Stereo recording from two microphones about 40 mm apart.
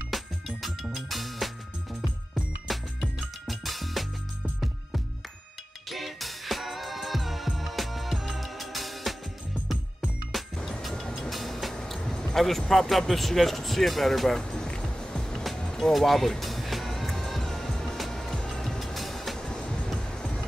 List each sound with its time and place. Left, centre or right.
0.1 s music: centre
2.7 s music: centre
5.9 s music: centre
10.3 s music: centre
10.8 s vehicle: centre
11.1 s train: centre
12.0 s music: centre
12.4 s speech: centre
15.5 s vehicle: centre
15.9 s music: centre
18.9 s train: centre
19.4 s train: centre